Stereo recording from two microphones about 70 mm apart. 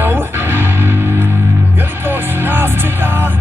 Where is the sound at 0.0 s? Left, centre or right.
Right.